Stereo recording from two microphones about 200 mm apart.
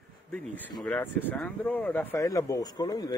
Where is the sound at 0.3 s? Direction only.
5° left (ahead or behind).